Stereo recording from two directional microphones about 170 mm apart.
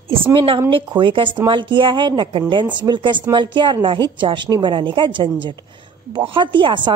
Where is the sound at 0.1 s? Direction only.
30° right (ahead or behind).